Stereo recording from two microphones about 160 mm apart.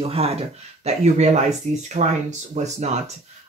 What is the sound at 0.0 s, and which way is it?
Speech, 40° right (ahead or behind).